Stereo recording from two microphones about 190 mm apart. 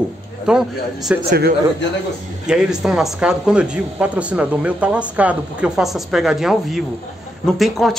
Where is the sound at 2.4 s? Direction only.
5° right (ahead or behind).